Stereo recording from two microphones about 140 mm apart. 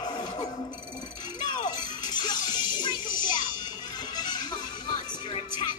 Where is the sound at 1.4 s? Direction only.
30° left (ahead or behind).